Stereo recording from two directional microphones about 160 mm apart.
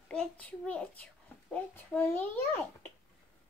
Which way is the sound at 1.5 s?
10° left (ahead or behind).